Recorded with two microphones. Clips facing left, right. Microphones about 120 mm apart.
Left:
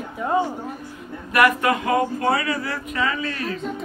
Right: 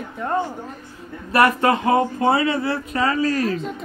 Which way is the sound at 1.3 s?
30° right (ahead or behind).